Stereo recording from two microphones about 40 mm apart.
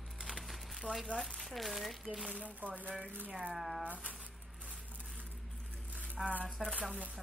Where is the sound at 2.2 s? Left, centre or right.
Right.